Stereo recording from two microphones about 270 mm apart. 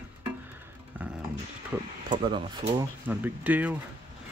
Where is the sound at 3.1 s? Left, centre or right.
Centre.